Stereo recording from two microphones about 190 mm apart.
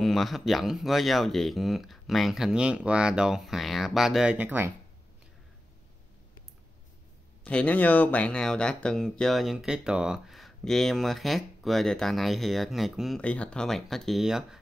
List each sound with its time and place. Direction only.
0.0 s speech: centre (ahead or behind)
7.4 s speech: 5° left (ahead or behind)